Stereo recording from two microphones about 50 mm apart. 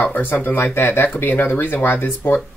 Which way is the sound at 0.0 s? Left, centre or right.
Left.